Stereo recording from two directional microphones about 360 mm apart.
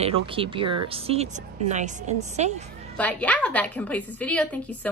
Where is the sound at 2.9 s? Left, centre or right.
Centre.